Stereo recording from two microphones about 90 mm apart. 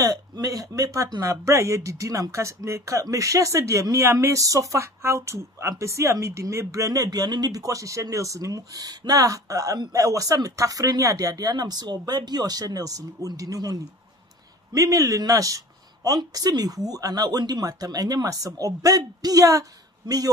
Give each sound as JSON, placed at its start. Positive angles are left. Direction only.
{"t": 0.0, "sound": "speech", "side_deg": -45}